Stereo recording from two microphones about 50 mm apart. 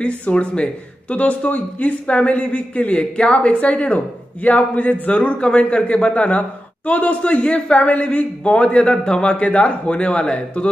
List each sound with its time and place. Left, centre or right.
0.0 s speech: left